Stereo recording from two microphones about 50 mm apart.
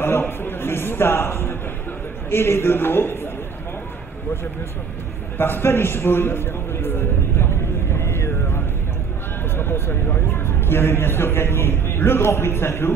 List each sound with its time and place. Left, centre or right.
0.0 s a man's voice: left
5.4 s a sound: left
9.6 s a man's voice: left